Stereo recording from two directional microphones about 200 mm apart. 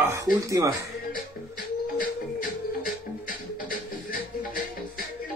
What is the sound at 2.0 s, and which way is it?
Music, 45° left (ahead or behind).